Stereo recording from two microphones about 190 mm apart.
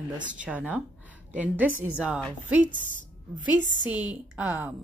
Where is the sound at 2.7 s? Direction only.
40° right (ahead or behind).